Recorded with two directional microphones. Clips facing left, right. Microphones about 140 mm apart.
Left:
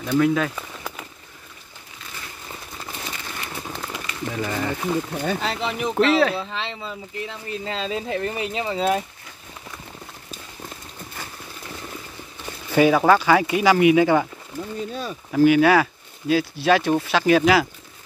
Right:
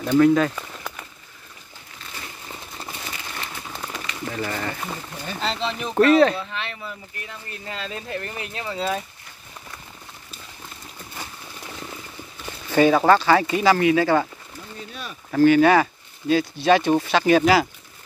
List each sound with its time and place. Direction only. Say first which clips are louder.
0.1 s speech: right 3 dB; centre (ahead or behind)
3.9 s a sound: left 1 dB; 15° left (ahead or behind)
5.4 s speech: left 1 dB; 10° left (ahead or behind)
6.1 s speech: right 3 dB; 5° left (ahead or behind)
6.5 s speech: left 2 dB; 25° left (ahead or behind)
12.7 s speech: even; 5° left (ahead or behind)
15.3 s speech: even; 10° left (ahead or behind)